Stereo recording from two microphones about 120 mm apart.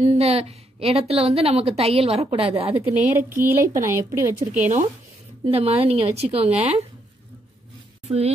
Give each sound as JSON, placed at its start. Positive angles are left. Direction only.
{"t": 0.0, "sound": "a woman's voice", "side_deg": -65}
{"t": 2.7, "sound": "speech", "side_deg": -15}
{"t": 5.4, "sound": "a woman's voice", "side_deg": -55}
{"t": 8.1, "sound": "speech", "side_deg": -50}